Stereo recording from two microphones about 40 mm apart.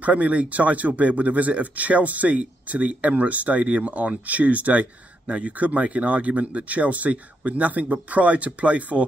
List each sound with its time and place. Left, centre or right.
0.0 s speech: right